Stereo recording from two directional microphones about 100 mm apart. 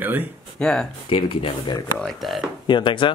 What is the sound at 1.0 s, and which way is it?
Speech, 65° left (ahead or behind).